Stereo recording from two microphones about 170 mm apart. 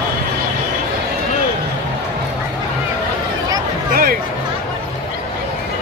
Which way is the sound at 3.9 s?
60° right (ahead or behind).